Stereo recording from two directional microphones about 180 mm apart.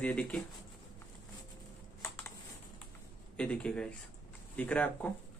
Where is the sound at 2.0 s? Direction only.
15° left (ahead or behind).